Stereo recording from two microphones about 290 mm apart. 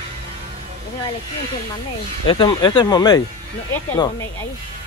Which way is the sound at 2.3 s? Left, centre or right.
Centre.